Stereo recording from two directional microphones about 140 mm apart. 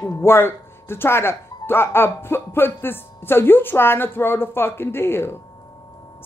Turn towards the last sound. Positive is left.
turn(degrees=15)  # may be behind; listen again after turning